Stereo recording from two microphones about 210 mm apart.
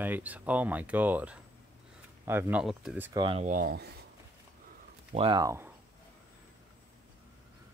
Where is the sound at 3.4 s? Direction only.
45° right (ahead or behind).